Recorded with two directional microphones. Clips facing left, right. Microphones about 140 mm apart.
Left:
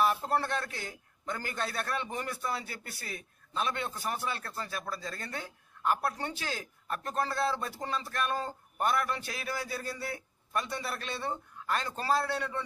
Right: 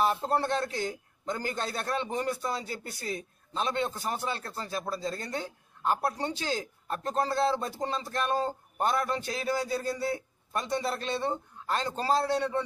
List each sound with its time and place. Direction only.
0.0 s a man's voice: 30° right (ahead or behind)